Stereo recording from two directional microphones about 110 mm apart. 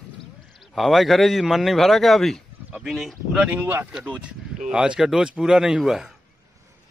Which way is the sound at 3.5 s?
15° right (ahead or behind).